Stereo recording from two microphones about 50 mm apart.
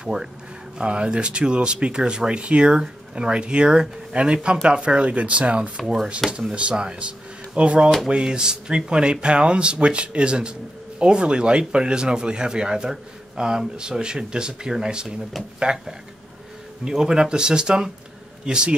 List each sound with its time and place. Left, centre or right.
0.0 s speech: centre
16.8 s speech: centre